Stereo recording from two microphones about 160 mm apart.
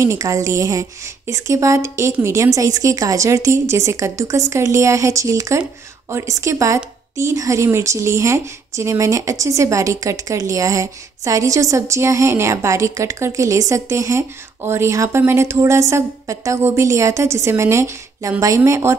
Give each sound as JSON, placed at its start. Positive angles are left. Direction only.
{"t": 0.0, "sound": "speech", "side_deg": -20}